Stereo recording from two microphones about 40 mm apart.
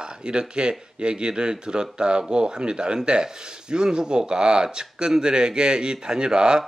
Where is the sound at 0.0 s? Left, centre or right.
Right.